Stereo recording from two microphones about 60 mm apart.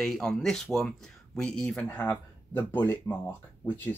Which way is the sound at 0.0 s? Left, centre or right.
Centre.